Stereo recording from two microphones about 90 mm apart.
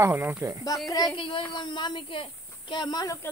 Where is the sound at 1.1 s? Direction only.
70° left (ahead or behind).